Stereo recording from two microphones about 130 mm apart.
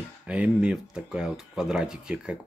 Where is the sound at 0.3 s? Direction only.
10° right (ahead or behind).